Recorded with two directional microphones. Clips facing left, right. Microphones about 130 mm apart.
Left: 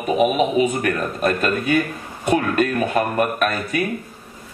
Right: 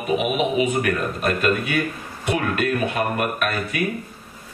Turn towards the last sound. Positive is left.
turn(degrees=40)  # may be behind; listen again after turning